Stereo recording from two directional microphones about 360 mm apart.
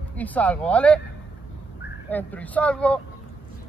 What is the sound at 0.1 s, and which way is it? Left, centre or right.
Speech, centre.